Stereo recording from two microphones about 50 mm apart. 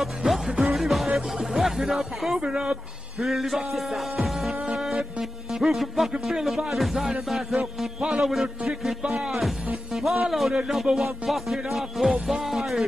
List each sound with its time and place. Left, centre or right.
0.0 s music: centre
2.4 s a man's voice: centre
3.2 s music: centre
8.0 s a man's voice: centre
9.9 s music: centre